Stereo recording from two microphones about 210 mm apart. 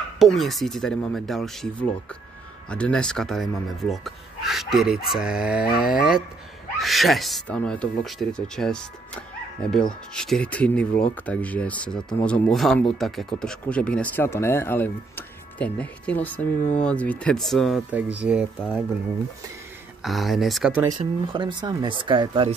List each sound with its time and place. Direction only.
0.2 s speech: centre (ahead or behind)
20.0 s speech: centre (ahead or behind)
21.0 s speech: 20° right (ahead or behind)